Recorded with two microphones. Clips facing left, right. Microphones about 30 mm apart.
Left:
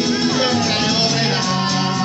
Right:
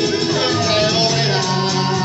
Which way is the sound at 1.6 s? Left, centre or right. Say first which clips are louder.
Right 1 dB; left.